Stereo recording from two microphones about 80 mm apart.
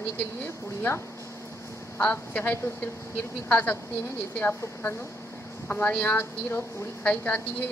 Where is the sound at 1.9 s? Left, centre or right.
Centre.